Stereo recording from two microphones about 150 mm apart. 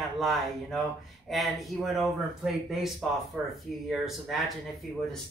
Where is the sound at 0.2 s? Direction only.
Centre (ahead or behind).